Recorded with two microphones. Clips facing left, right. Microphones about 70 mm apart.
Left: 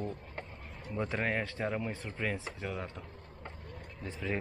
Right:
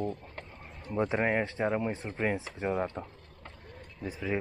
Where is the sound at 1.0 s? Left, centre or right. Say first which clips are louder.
Right 5 dB; right.